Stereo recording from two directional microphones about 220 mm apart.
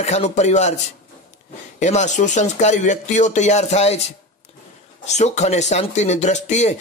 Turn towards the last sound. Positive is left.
turn(degrees=30)  # may be behind; listen again after turning